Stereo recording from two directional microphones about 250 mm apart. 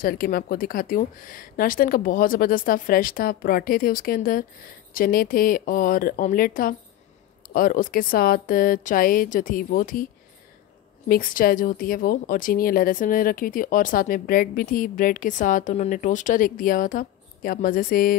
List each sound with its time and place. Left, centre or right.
0.0 s a woman's voice: left
11.1 s a woman's voice: left